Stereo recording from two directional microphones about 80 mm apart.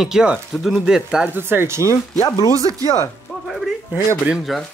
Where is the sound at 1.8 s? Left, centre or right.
Left.